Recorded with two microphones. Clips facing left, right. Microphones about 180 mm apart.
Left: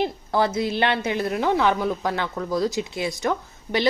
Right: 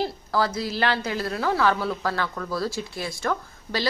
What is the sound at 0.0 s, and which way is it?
A woman's voice, 25° left (ahead or behind).